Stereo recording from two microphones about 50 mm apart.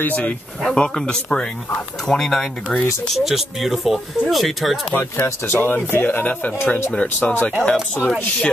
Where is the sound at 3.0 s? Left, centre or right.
Centre.